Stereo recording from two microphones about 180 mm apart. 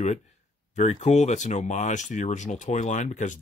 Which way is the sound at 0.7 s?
40° left (ahead or behind).